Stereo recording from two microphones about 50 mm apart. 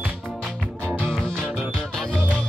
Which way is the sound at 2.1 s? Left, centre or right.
Left.